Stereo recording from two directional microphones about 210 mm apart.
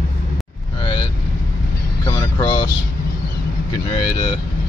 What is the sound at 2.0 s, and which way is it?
Vehicle, 20° left (ahead or behind).